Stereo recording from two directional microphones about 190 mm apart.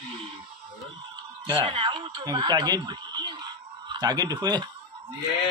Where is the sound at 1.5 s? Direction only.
25° right (ahead or behind).